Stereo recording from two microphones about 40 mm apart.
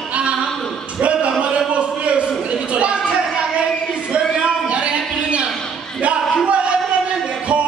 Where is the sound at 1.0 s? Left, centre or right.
Right.